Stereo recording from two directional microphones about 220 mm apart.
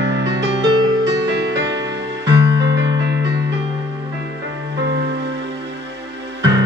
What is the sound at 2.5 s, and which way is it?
Music, 15° right (ahead or behind).